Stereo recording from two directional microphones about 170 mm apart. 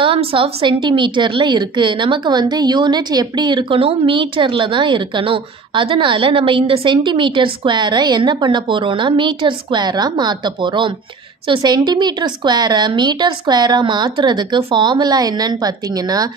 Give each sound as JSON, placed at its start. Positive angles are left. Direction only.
{"t": 0.0, "sound": "a woman's voice", "side_deg": -30}